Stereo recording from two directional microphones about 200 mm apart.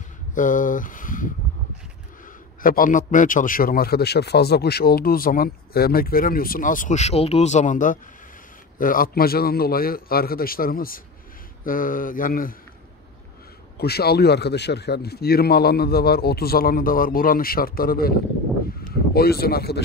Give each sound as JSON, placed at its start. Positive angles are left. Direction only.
{"t": 0.3, "sound": "speech", "side_deg": 40}
{"t": 2.6, "sound": "a man's voice", "side_deg": 45}
{"t": 13.7, "sound": "a man's voice", "side_deg": 50}
{"t": 19.1, "sound": "a man's voice", "side_deg": 50}